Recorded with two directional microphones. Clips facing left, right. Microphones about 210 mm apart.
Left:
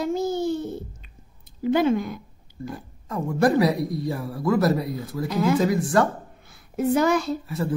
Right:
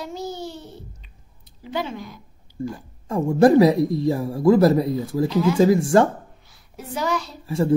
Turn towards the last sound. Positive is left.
turn(degrees=-30)  # may be behind; listen again after turning